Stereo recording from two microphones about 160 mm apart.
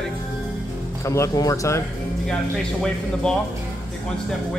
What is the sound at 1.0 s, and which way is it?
Speech, 15° left (ahead or behind).